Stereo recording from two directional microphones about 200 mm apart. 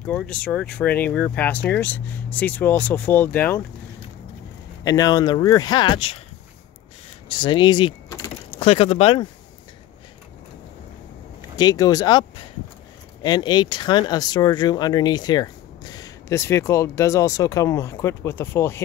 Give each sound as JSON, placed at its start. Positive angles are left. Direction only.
{"t": 0.0, "sound": "speech", "side_deg": 5}
{"t": 4.8, "sound": "speech", "side_deg": 20}
{"t": 7.2, "sound": "speech", "side_deg": 25}
{"t": 11.5, "sound": "speech", "side_deg": 20}